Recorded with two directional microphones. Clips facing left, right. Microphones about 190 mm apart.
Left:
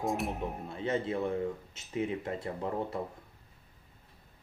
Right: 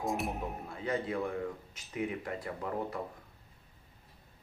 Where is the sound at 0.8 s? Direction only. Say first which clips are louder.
Left 2 dB; 25° left (ahead or behind).